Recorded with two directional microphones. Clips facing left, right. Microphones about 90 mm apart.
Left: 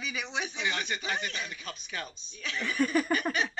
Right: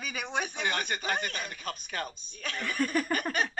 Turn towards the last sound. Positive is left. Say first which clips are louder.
# left 2 dB
turn(degrees=10)  # may be behind; listen again after turning